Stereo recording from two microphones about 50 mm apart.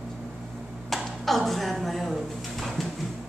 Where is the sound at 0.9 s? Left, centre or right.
Centre.